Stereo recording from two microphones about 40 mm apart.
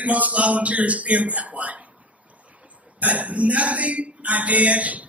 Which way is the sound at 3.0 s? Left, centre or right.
Right.